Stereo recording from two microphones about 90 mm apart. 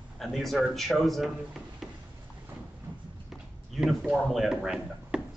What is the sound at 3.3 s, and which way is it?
Speech, centre (ahead or behind).